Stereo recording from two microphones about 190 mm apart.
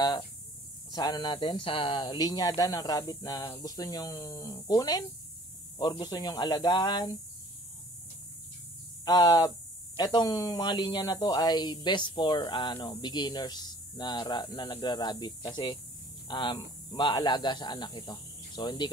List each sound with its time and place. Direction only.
0.9 s speech: 20° left (ahead or behind)
9.0 s speech: 20° left (ahead or behind)